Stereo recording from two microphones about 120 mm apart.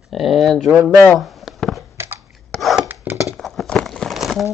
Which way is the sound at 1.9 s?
20° right (ahead or behind).